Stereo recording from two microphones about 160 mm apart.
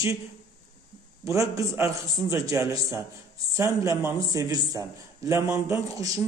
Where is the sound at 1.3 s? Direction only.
20° right (ahead or behind).